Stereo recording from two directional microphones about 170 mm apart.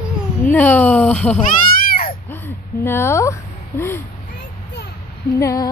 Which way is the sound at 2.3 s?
15° left (ahead or behind).